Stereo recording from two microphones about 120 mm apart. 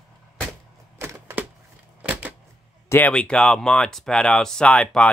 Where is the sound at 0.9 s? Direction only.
20° right (ahead or behind).